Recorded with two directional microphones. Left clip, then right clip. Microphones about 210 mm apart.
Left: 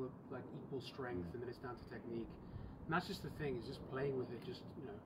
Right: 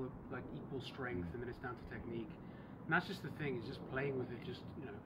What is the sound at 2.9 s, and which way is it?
Speech, 5° left (ahead or behind).